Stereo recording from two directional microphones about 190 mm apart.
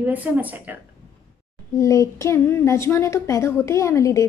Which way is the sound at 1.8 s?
15° left (ahead or behind).